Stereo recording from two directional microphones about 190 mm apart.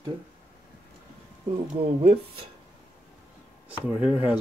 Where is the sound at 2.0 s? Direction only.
35° right (ahead or behind).